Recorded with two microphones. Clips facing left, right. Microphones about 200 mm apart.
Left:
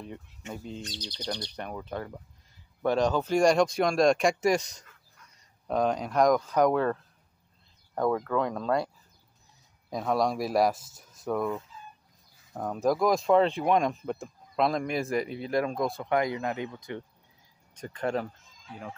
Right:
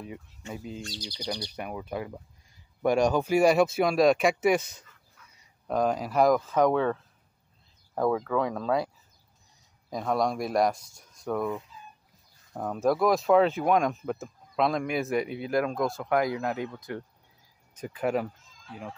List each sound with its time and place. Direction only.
0.5 s speech: 5° right (ahead or behind)
0.8 s speech: 20° left (ahead or behind)
1.2 s speech: 5° right (ahead or behind)